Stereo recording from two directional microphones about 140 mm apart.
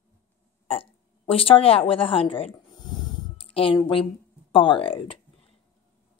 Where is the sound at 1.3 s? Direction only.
40° left (ahead or behind).